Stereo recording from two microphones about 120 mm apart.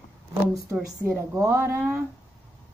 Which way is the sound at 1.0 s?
25° right (ahead or behind).